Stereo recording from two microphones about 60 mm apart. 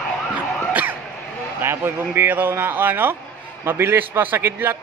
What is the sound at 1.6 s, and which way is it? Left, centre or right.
A man's voice, right.